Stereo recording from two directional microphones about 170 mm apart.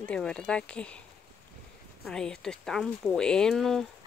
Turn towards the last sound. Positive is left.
turn(degrees=0)  # may be behind; listen again after turning